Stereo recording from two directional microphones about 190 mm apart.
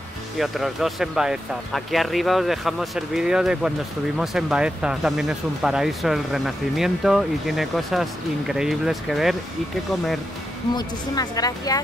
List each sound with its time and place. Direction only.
0.4 s speech: centre (ahead or behind)
10.7 s speech: 20° left (ahead or behind)